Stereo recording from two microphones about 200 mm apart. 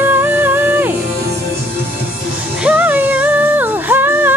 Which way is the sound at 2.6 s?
5° right (ahead or behind).